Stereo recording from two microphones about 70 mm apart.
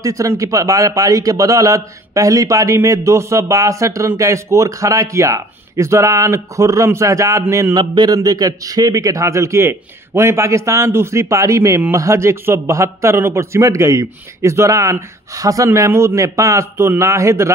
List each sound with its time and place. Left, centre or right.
0.0 s a man's voice: right
7.7 s a man's voice: right
16.7 s a man's voice: right